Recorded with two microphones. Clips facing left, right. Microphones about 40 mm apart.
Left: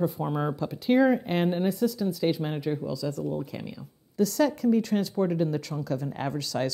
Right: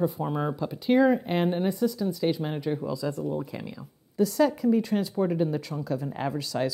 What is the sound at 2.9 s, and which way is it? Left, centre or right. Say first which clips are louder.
Speech: right 1 dB; right.